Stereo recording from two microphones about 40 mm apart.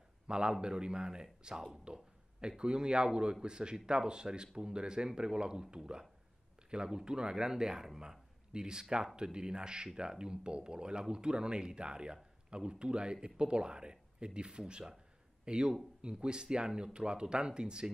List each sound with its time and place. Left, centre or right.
0.3 s a man's voice: right